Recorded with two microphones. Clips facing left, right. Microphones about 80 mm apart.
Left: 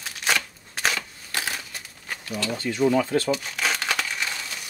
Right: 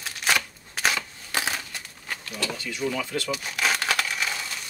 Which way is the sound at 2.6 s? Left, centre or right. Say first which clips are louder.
Left 10 dB; left.